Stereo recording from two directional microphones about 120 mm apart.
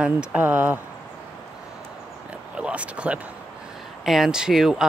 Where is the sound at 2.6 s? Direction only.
10° right (ahead or behind).